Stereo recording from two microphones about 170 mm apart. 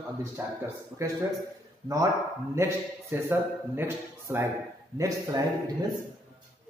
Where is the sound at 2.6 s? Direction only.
15° right (ahead or behind).